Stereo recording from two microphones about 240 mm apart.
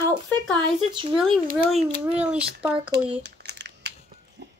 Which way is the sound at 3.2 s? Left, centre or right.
Right.